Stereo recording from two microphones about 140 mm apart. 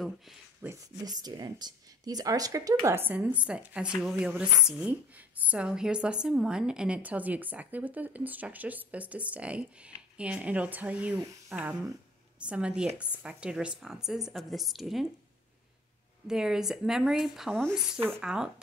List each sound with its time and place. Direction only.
0.6 s speech: 15° right (ahead or behind)
1.0 s speech: 30° right (ahead or behind)
3.0 s a woman's voice: 10° right (ahead or behind)
16.3 s a woman's voice: 5° right (ahead or behind)